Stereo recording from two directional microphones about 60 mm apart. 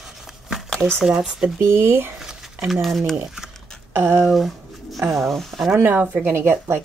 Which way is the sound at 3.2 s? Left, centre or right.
Centre.